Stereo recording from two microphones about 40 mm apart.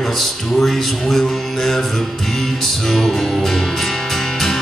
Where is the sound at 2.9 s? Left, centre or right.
Centre.